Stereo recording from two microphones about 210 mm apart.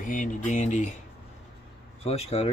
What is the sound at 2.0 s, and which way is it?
Speech, 30° left (ahead or behind).